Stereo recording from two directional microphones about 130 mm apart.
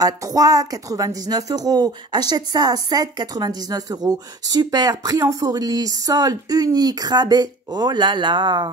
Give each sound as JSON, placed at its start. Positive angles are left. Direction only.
{"t": 0.0, "sound": "speech", "side_deg": -30}